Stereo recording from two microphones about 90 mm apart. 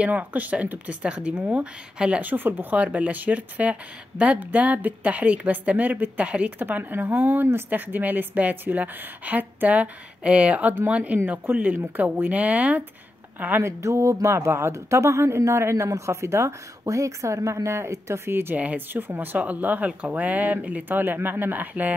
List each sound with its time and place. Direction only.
0.0 s a woman's voice: 15° right (ahead or behind)